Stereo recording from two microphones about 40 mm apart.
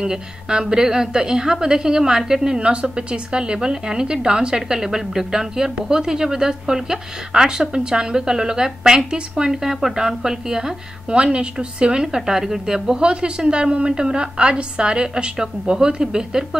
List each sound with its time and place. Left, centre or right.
0.0 s a woman's voice: centre
11.1 s a woman's voice: right